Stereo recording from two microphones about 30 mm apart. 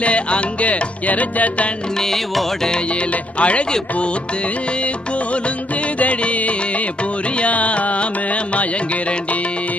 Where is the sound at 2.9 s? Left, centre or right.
Left.